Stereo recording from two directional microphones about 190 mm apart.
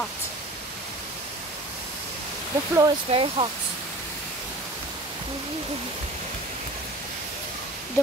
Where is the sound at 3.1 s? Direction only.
30° right (ahead or behind).